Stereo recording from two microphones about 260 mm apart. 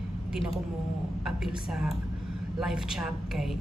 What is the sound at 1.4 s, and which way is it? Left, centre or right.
A woman's voice, centre.